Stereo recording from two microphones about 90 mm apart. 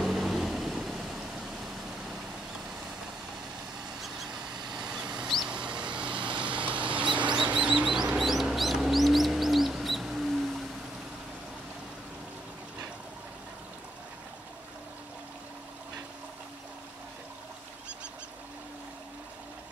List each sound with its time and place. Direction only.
0.0 s vehicle: centre (ahead or behind)
4.7 s vehicle: 10° right (ahead or behind)
6.4 s rodents: 15° right (ahead or behind)
7.3 s bird: 10° right (ahead or behind)